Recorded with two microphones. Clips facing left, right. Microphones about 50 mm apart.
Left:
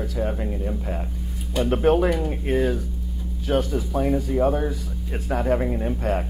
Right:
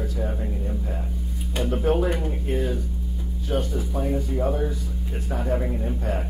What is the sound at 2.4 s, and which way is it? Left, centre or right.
Speech, left.